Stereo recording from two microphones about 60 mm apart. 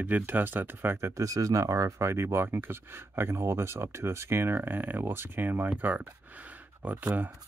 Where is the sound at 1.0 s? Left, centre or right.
Right.